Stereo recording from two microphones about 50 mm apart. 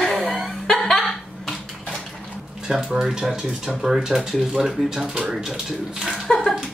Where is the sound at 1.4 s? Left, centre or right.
Centre.